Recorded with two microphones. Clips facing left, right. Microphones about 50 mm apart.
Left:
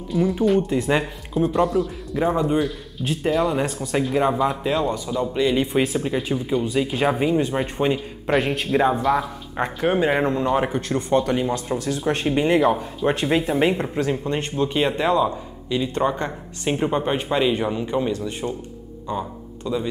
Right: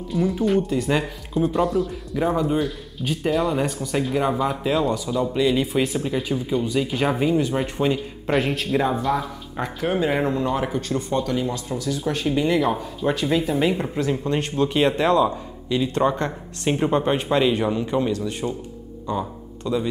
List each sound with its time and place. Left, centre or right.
0.1 s a man's voice: centre
0.7 s speech: centre
1.3 s a man's voice: centre
8.3 s a man's voice: centre
9.6 s speech: left
10.1 s speech: centre
10.5 s speech: left
14.1 s a man's voice: centre
19.6 s a man's voice: centre